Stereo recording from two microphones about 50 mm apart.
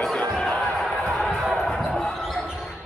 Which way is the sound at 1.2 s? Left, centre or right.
Centre.